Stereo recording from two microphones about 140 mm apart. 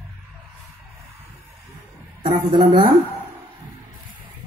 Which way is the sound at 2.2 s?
35° right (ahead or behind).